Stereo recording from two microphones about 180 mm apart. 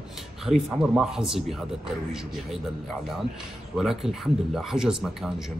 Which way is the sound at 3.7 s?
Centre (ahead or behind).